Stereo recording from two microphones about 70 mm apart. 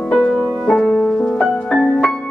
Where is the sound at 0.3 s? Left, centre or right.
Centre.